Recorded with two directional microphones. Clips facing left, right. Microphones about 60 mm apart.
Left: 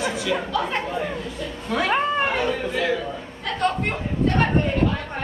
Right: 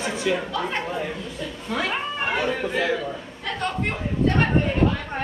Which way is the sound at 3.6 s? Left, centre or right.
Centre.